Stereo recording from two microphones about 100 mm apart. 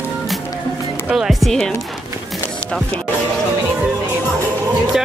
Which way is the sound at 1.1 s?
5° right (ahead or behind).